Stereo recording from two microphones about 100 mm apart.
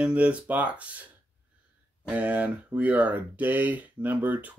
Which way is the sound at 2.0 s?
15° right (ahead or behind).